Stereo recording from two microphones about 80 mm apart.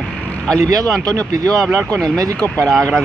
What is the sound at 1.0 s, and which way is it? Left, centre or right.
Speech, right.